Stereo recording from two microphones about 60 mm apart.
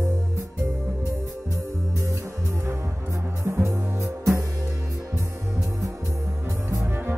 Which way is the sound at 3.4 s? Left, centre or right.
Right.